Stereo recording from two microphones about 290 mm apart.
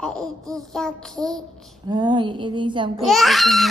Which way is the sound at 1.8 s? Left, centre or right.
Centre.